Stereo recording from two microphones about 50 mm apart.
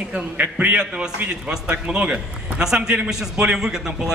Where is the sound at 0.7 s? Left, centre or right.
Centre.